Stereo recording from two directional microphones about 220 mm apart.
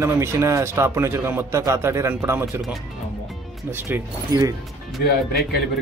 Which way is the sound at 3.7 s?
10° right (ahead or behind).